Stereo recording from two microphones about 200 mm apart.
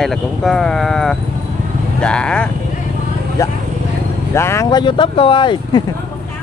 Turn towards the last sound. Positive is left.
turn(degrees=25)  # may be behind; listen again after turning